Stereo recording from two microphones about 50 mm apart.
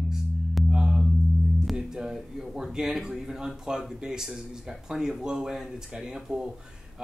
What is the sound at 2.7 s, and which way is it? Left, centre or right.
Speech, centre.